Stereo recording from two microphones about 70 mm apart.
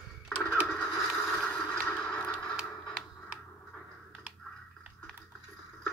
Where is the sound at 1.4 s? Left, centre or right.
Centre.